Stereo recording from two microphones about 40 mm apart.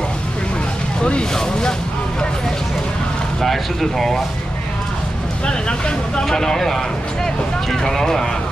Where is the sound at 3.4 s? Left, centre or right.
Centre.